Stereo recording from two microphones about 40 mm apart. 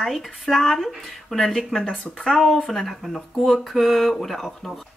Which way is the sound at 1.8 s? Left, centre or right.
Left.